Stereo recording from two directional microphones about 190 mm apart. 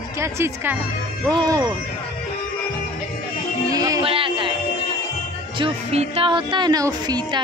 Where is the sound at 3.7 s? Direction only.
20° right (ahead or behind).